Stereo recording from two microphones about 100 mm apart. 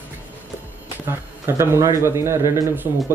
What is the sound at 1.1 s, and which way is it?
A man's voice, 25° right (ahead or behind).